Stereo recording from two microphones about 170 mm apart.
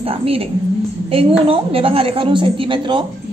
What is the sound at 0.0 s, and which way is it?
Speech, 35° right (ahead or behind).